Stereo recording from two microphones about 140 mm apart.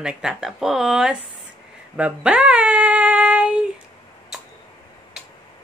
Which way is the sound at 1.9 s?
10° right (ahead or behind).